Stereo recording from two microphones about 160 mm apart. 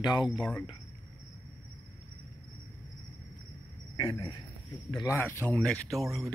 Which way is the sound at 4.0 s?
25° left (ahead or behind).